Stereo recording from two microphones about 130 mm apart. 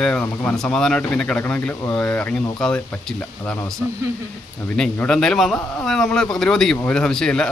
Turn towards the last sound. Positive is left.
turn(degrees=5)  # may be behind; listen again after turning